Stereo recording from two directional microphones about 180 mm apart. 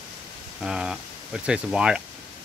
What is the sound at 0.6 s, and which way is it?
Speech, 5° right (ahead or behind).